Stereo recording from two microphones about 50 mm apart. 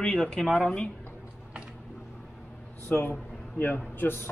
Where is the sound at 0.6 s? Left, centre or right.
Left.